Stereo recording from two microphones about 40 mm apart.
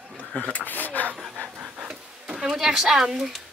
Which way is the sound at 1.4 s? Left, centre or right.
Right.